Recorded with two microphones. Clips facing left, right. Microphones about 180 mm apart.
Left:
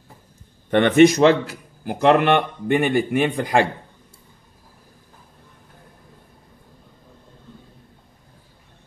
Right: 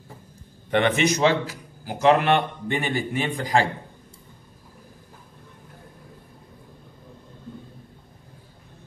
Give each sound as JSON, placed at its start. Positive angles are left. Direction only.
{"t": 0.7, "sound": "a man's voice", "side_deg": 55}